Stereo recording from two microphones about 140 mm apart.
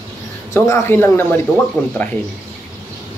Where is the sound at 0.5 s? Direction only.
20° left (ahead or behind).